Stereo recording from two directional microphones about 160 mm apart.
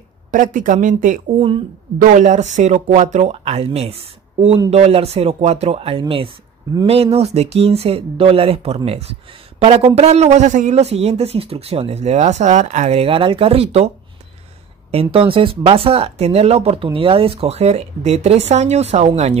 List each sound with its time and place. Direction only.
0.3 s speech: 55° right (ahead or behind)